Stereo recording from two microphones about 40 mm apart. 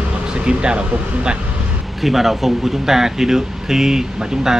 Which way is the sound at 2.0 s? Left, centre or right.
Centre.